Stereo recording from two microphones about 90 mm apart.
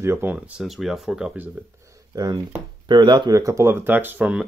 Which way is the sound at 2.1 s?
45° right (ahead or behind).